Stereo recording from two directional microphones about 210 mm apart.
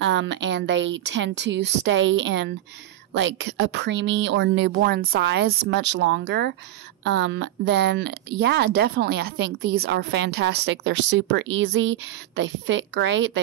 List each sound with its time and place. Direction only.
0.0 s speech: 60° right (ahead or behind)